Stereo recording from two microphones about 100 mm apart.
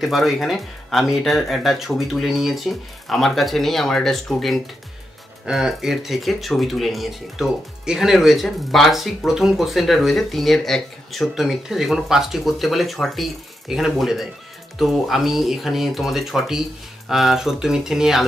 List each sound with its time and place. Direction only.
0.0 s speech: centre (ahead or behind)